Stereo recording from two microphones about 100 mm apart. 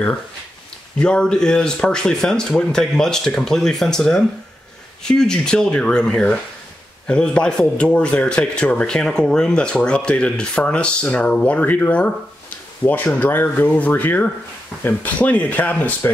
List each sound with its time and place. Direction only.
0.9 s a man's voice: 10° left (ahead or behind)
14.7 s speech: 5° right (ahead or behind)
15.1 s a man's voice: 15° left (ahead or behind)